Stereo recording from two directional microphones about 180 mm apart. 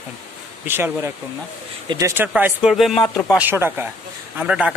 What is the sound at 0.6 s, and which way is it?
A man's voice, 15° right (ahead or behind).